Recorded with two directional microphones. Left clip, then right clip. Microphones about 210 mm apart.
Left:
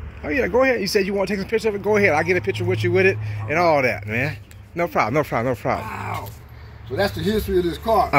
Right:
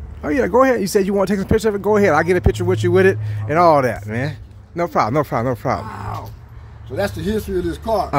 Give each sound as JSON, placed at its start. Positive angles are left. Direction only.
{"t": 0.2, "sound": "speech", "side_deg": -30}
{"t": 3.8, "sound": "speech", "side_deg": -15}
{"t": 6.9, "sound": "a man's voice", "side_deg": 5}